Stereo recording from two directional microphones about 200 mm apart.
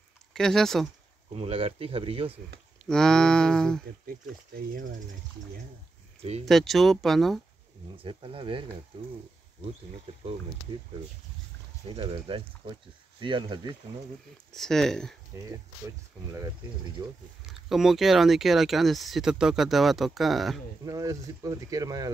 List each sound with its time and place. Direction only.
0.3 s speech: centre (ahead or behind)
1.3 s speech: 30° right (ahead or behind)
2.8 s speech: 5° left (ahead or behind)
6.4 s speech: centre (ahead or behind)
8.0 s speech: 25° right (ahead or behind)
11.9 s speech: 25° right (ahead or behind)
14.5 s speech: centre (ahead or behind)
16.3 s speech: 15° right (ahead or behind)
17.5 s speech: centre (ahead or behind)
20.8 s speech: 20° right (ahead or behind)